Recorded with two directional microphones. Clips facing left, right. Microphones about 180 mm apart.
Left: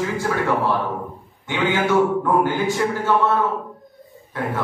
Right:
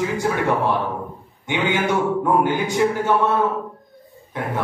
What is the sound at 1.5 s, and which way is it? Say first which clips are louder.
A man's voice: left 1 dB; 15° right (ahead or behind).